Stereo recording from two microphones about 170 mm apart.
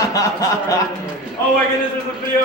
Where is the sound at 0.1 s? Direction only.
20° left (ahead or behind).